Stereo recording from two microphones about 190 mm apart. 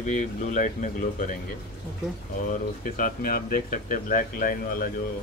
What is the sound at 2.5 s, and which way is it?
Speech, 45° left (ahead or behind).